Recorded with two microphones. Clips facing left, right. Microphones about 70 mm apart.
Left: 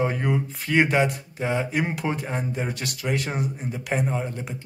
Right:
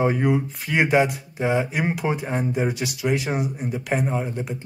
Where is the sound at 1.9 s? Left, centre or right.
Centre.